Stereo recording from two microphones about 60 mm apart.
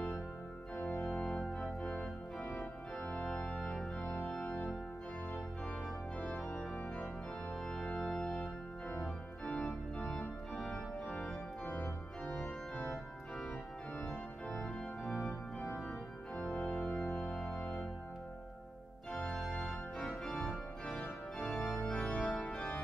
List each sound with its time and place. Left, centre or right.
0.9 s organ: left
1.5 s organ: centre
3.5 s organ: centre
4.3 s organ: left
6.1 s organ: centre
7.5 s organ: centre
14.0 s organ: centre
17.0 s music: left
17.5 s organ: left
19.1 s organ: centre
20.8 s organ: centre